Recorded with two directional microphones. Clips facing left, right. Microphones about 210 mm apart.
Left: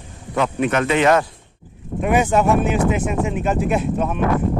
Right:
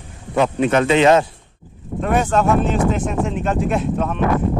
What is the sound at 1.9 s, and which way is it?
Speech, 10° left (ahead or behind).